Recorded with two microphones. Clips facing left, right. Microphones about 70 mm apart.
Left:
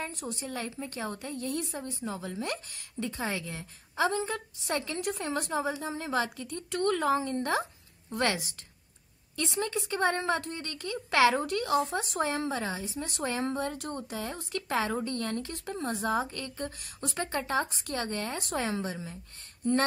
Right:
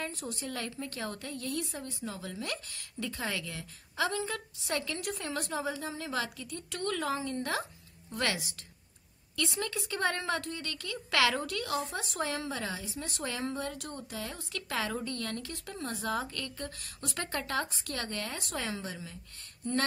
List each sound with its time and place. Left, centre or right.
0.0 s a woman's voice: centre; by 8.4 s left
9.4 s speech: left